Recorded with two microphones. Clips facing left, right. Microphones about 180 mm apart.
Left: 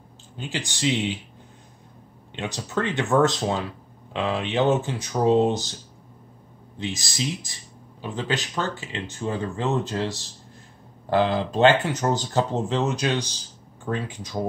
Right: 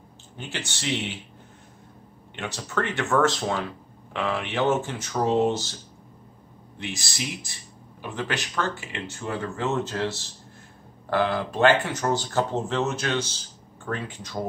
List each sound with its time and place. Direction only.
0.4 s speech: 15° left (ahead or behind)
2.3 s speech: 15° left (ahead or behind)
6.8 s speech: 20° left (ahead or behind)